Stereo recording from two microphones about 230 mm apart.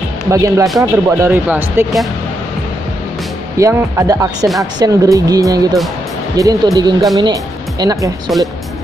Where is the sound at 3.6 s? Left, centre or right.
Centre.